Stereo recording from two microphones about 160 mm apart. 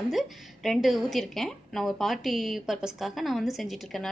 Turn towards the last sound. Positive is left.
turn(degrees=0)  # may be behind; listen again after turning